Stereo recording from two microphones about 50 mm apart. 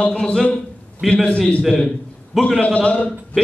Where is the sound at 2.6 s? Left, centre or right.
Left.